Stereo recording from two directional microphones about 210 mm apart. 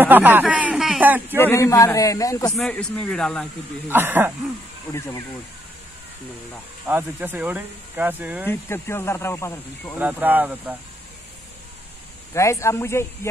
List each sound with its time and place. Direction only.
0.0 s a sound: 10° right (ahead or behind)
1.4 s speech: 15° left (ahead or behind)
2.5 s speech: centre (ahead or behind)
3.9 s speech: 10° right (ahead or behind)
4.9 s speech: 15° left (ahead or behind)
6.9 s speech: 10° right (ahead or behind)
8.5 s speech: 10° left (ahead or behind)
9.9 s speech: 10° right (ahead or behind)
12.4 s speech: 15° left (ahead or behind)